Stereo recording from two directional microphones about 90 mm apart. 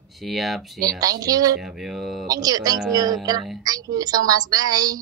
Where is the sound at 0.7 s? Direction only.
45° right (ahead or behind).